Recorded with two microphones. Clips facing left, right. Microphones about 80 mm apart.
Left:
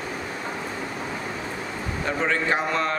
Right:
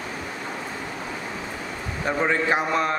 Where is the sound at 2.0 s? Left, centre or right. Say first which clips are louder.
Right 2 dB; centre.